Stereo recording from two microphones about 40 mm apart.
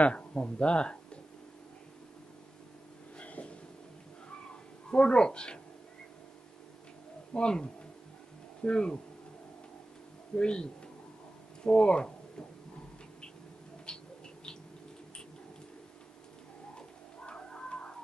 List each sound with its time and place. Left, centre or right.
0.0 s speech: left
3.2 s a sound: left
4.5 s cat: left
7.3 s speech: left
10.3 s speech: left
13.9 s a sound: centre
17.3 s cat: left